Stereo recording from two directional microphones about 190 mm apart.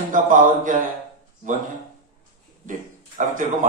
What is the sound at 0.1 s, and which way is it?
Speech, 45° right (ahead or behind).